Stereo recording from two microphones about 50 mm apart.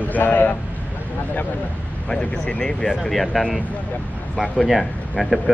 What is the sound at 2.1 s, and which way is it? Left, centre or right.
Speech, left.